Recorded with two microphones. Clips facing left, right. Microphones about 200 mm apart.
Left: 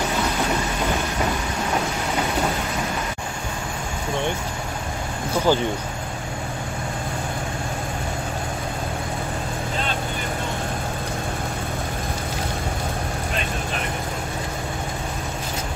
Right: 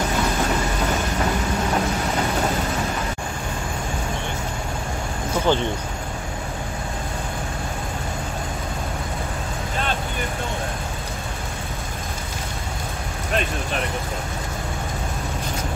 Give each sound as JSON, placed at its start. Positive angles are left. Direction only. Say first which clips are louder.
{"t": 5.5, "sound": "speech", "louder": "left 1 dB", "side_deg": 5}